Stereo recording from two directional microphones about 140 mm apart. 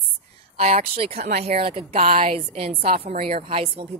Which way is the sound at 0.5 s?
45° right (ahead or behind).